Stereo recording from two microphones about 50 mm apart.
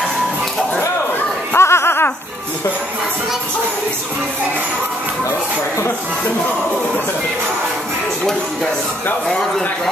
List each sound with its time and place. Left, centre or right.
1.5 s snicker: left